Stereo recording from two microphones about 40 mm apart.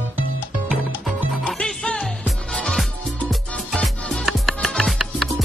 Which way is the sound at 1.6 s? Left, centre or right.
Left.